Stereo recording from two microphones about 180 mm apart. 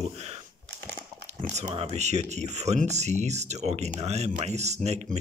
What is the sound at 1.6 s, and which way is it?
Speech, 20° right (ahead or behind).